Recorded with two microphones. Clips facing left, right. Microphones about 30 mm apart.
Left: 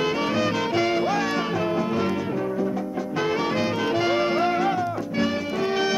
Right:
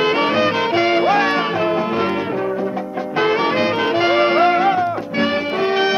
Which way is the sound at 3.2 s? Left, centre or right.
Right.